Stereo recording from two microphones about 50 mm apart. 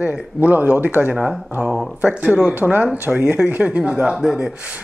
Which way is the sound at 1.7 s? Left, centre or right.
Centre.